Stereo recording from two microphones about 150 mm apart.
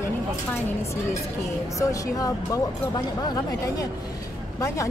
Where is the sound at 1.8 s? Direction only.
20° left (ahead or behind).